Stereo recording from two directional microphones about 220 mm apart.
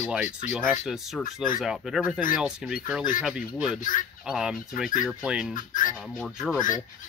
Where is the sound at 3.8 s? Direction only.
35° left (ahead or behind).